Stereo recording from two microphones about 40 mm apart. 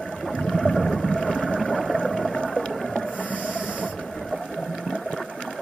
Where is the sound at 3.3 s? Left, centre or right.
Right.